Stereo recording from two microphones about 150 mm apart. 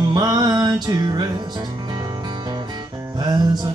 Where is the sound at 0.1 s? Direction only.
25° right (ahead or behind).